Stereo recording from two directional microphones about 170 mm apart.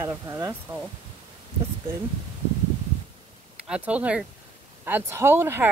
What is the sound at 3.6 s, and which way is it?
Speech, 5° right (ahead or behind).